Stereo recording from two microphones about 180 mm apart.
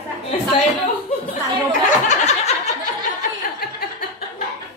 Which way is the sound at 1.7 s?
40° left (ahead or behind).